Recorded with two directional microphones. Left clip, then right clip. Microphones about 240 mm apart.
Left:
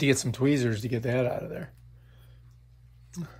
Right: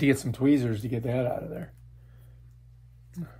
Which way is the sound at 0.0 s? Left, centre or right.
Left.